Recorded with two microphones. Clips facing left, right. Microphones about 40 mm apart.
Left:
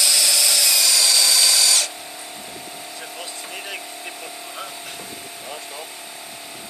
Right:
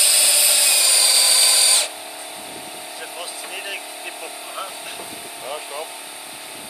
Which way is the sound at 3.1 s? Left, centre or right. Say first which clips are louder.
Right 2 dB; centre.